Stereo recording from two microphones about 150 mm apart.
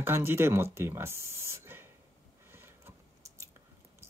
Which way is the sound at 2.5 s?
15° right (ahead or behind).